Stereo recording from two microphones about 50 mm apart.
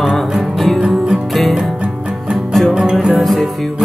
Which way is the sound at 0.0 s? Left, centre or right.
Centre.